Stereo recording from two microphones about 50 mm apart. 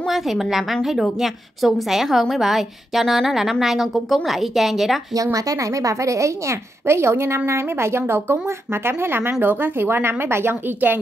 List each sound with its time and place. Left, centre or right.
0.1 s a woman's voice: centre
5.6 s a woman's voice: right